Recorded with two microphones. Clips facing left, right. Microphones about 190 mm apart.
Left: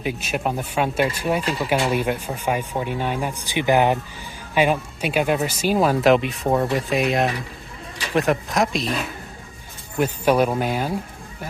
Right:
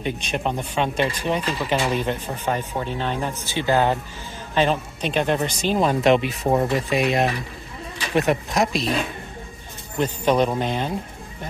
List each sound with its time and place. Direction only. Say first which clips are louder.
0.0 s speech: left 1 dB; 5° left (ahead or behind)
9.9 s speech: left 1 dB; 10° left (ahead or behind)